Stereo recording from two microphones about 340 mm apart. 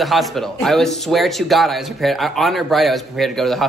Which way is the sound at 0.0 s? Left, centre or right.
Centre.